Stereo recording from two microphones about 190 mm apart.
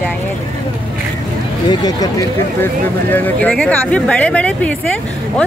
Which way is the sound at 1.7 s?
20° left (ahead or behind).